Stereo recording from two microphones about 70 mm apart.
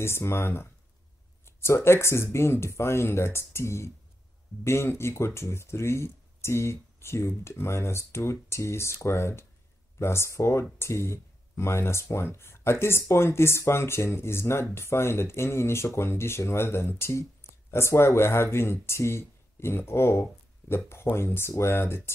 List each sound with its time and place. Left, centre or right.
0.0 s speech: left